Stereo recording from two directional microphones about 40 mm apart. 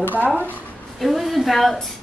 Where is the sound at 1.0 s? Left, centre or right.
Centre.